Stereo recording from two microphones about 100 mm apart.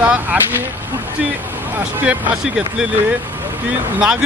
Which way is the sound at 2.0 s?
10° right (ahead or behind).